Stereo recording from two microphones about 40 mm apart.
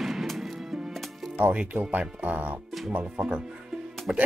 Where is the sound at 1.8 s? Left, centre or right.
Right.